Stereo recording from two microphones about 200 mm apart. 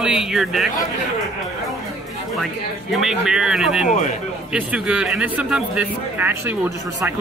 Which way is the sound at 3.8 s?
35° left (ahead or behind).